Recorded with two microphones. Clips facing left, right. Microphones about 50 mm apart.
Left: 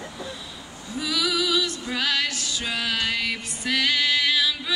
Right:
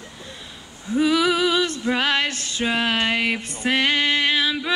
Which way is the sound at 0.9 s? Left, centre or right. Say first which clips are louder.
Right 8 dB; right.